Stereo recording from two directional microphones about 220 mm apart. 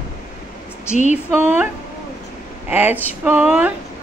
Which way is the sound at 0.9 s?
30° left (ahead or behind).